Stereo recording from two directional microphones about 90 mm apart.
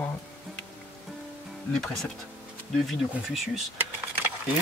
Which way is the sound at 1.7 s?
5° left (ahead or behind).